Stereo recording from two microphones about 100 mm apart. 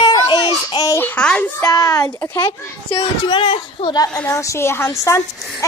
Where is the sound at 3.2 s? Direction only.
50° left (ahead or behind).